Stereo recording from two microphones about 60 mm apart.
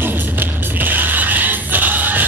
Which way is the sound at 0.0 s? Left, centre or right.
Right.